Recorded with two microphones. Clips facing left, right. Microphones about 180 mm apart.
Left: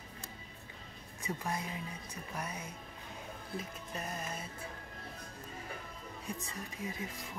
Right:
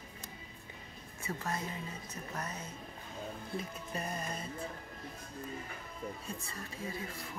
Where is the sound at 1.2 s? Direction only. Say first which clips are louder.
Even; 15° left (ahead or behind).